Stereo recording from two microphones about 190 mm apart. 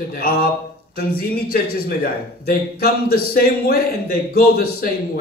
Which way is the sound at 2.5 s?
50° left (ahead or behind).